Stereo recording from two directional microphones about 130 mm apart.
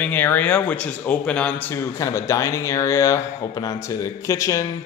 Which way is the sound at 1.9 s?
25° left (ahead or behind).